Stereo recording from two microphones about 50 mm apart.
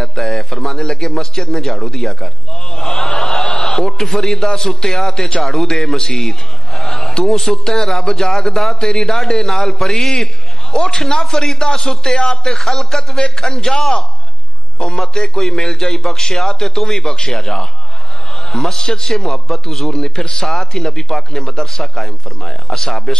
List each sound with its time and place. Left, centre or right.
0.0 s a sound: centre
4.6 s a man's voice: centre
17.0 s a man's voice: centre